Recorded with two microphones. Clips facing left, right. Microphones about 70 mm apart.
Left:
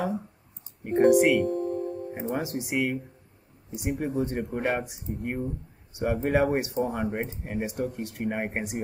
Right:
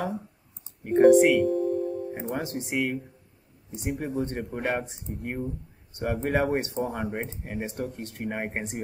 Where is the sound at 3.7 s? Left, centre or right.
Centre.